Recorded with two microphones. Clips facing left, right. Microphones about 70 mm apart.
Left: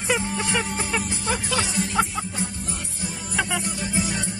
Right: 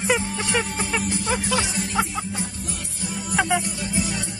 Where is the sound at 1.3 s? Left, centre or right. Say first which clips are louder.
Right 1 dB; right.